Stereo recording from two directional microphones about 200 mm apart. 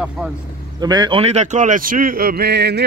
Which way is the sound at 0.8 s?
20° right (ahead or behind).